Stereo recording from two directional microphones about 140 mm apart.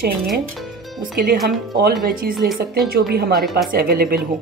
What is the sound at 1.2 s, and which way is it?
Speech, 90° right.